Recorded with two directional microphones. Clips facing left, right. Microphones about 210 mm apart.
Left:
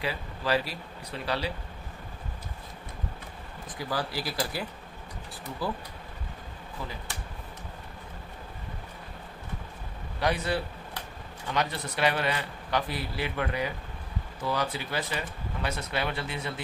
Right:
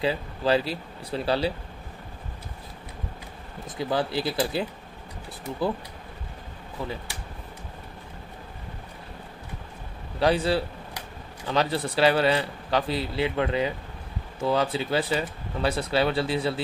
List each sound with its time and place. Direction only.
0.0 s speech: 25° right (ahead or behind)
3.6 s speech: 25° right (ahead or behind)
10.1 s a man's voice: 30° right (ahead or behind)